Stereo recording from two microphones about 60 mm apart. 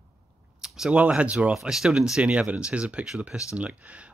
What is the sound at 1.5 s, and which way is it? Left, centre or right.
Speech, centre.